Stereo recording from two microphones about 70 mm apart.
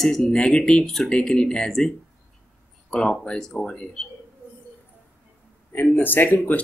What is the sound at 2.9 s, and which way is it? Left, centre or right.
Speech, centre.